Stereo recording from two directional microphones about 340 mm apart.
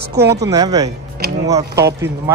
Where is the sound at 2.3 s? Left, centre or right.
Centre.